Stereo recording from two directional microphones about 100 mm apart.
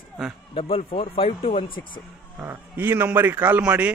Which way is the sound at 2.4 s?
20° right (ahead or behind).